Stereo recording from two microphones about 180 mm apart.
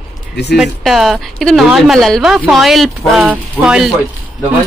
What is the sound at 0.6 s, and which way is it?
A woman's voice, centre (ahead or behind).